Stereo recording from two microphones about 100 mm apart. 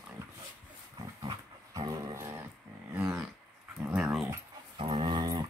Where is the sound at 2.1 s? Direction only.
25° right (ahead or behind).